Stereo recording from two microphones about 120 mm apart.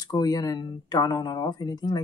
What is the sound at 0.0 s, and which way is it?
Speech, 30° left (ahead or behind).